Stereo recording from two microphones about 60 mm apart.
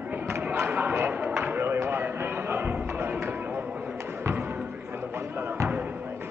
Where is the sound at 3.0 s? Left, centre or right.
Right.